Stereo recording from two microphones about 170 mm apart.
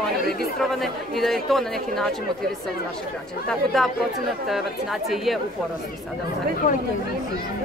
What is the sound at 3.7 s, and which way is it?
Speech, centre (ahead or behind).